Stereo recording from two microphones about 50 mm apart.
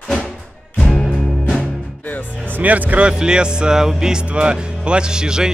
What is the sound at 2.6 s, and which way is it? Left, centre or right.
Speech, right.